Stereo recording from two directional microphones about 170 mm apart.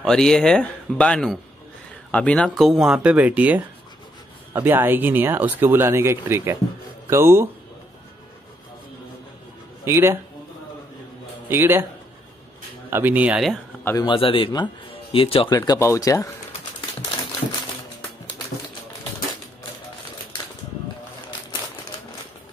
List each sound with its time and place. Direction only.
0.0 s speech: 5° left (ahead or behind); by 7.4 s 15° right (ahead or behind)
9.8 s speech: 15° right (ahead or behind)
11.4 s speech: 15° right (ahead or behind)
12.9 s speech: 10° right (ahead or behind)
14.0 s speech: 30° left (ahead or behind)
15.5 s speech: 20° left (ahead or behind)